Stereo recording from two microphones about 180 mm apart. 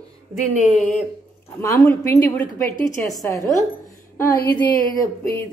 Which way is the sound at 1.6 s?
20° left (ahead or behind).